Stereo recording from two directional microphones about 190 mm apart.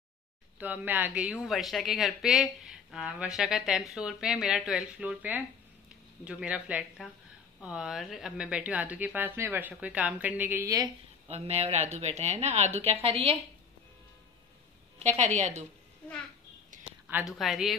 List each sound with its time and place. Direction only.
0.6 s a woman's voice: 10° right (ahead or behind)
11.2 s a woman's voice: 35° right (ahead or behind)
15.0 s a woman's voice: 40° right (ahead or behind)
16.7 s a sound: 40° right (ahead or behind)
17.1 s speech: centre (ahead or behind)